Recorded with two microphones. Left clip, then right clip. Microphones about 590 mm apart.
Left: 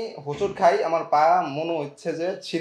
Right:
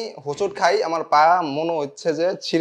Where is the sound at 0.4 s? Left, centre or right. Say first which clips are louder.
Right 1 dB; right.